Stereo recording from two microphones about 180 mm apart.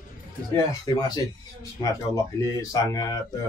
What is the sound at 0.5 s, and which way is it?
Speech, 20° left (ahead or behind).